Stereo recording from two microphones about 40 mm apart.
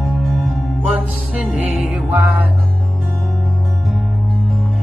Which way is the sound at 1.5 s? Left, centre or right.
Right.